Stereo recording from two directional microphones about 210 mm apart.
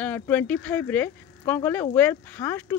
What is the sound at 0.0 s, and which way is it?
Speech, 5° left (ahead or behind).